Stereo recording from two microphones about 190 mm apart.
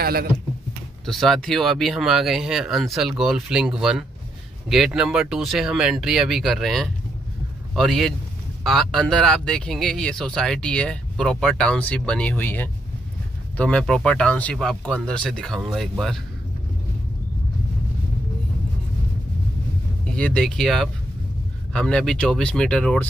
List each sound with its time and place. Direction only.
0.0 s speech: 55° right (ahead or behind)
1.0 s a man's voice: centre (ahead or behind)
20.1 s speech: 5° left (ahead or behind)